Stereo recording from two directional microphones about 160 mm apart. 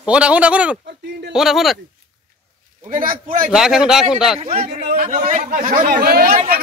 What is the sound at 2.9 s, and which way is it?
Speech, 60° right (ahead or behind).